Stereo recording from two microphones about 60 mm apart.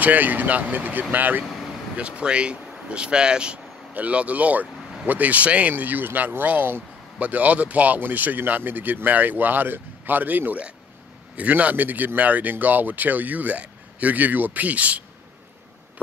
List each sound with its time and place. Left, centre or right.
0.0 s speech: right
2.0 s speech: centre